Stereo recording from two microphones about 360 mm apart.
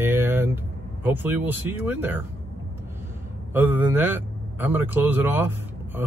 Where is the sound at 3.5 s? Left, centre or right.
Centre.